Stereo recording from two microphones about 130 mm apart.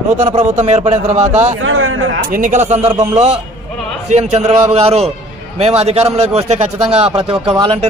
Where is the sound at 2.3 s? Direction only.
85° right.